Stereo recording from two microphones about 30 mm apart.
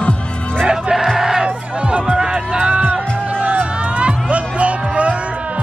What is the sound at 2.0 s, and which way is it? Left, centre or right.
Music, right.